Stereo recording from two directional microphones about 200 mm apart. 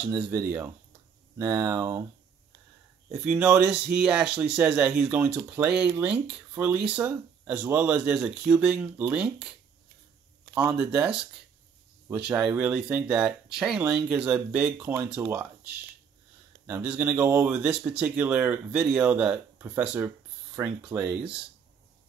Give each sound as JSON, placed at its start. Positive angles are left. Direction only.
{"t": 0.3, "sound": "speech", "side_deg": -15}
{"t": 3.1, "sound": "speech", "side_deg": -5}
{"t": 10.5, "sound": "speech", "side_deg": -5}
{"t": 12.3, "sound": "speech", "side_deg": -5}